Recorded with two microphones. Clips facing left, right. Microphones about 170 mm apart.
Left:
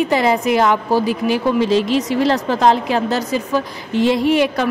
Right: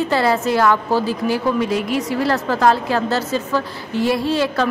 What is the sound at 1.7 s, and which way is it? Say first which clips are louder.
Speech: left 4 dB; 90° left.